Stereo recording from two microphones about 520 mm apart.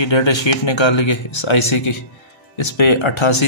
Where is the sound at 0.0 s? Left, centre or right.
Left.